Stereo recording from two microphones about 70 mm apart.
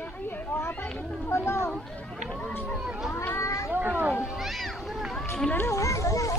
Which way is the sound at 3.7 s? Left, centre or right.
Right.